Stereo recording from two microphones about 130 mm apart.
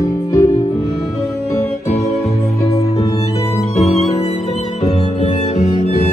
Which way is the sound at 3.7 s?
55° left (ahead or behind).